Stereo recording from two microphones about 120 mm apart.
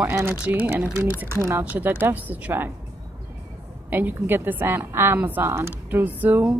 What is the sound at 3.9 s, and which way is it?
Speech, 15° right (ahead or behind).